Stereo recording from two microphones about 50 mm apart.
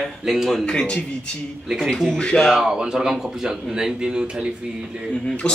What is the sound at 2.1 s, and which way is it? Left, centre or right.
Speech, centre.